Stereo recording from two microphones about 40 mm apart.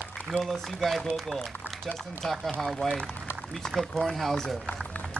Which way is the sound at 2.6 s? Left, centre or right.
Centre.